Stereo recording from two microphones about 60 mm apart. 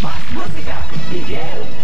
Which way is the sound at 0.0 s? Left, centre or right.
Centre.